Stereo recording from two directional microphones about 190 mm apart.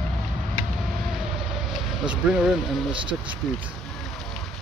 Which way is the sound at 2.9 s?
25° right (ahead or behind).